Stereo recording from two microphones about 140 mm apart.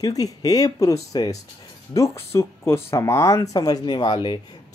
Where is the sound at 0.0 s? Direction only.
25° left (ahead or behind).